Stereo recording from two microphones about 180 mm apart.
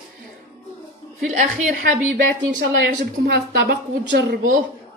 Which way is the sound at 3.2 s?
65° right (ahead or behind).